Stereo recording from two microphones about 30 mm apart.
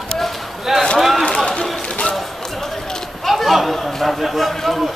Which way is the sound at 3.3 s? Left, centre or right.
Centre.